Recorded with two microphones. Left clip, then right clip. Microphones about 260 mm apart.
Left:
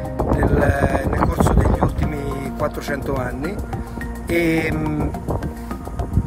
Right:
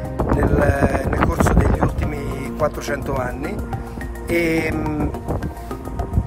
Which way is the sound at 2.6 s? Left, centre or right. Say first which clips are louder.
Right 3 dB; centre.